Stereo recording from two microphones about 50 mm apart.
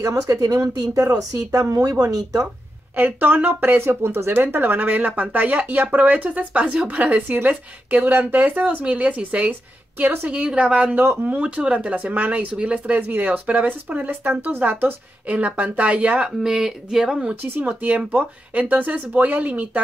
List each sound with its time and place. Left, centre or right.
0.3 s speech: right
3.0 s speech: right
4.3 s speech: right
10.3 s speech: right
13.0 s speech: right
14.2 s speech: right
15.3 s speech: right
16.4 s speech: centre
17.6 s speech: right